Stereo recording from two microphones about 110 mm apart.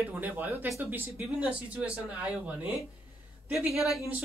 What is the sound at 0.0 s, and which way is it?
A man's voice, 15° right (ahead or behind).